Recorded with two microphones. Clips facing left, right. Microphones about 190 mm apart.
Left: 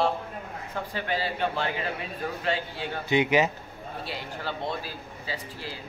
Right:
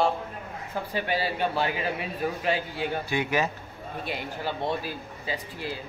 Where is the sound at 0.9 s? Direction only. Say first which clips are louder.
Right 2 dB; 10° right (ahead or behind).